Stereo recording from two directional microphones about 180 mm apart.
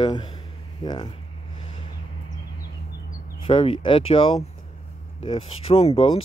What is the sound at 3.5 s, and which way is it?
Speech, 30° left (ahead or behind).